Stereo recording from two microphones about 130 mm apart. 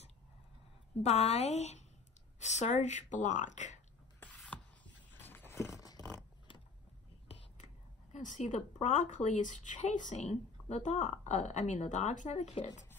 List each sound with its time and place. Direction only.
1.0 s speech: 55° left (ahead or behind)
4.5 s a sound: 10° left (ahead or behind)
8.1 s speech: 70° left (ahead or behind)